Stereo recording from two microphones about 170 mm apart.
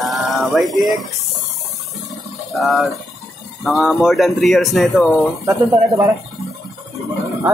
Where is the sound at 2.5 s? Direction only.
Centre (ahead or behind).